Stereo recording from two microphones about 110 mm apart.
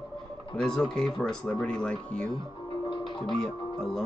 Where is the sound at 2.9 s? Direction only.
40° left (ahead or behind).